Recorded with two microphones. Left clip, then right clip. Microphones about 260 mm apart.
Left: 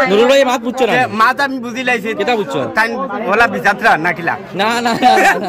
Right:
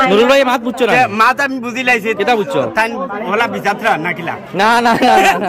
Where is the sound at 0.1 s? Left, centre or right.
Centre.